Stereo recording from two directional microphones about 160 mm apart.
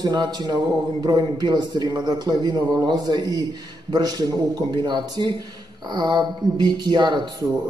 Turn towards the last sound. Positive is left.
turn(degrees=-25)  # may be behind; listen again after turning